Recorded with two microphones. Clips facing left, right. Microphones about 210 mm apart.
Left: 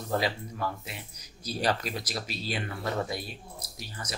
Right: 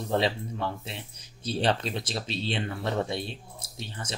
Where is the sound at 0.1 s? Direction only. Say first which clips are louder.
Right 3 dB; 25° right (ahead or behind).